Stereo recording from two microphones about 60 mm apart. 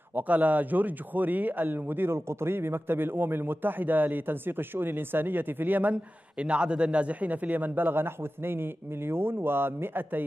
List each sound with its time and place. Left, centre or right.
0.1 s speech: right